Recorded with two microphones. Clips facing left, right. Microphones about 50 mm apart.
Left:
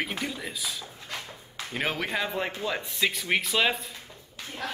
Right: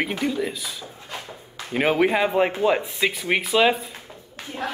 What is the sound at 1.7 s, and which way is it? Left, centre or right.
Speech, centre.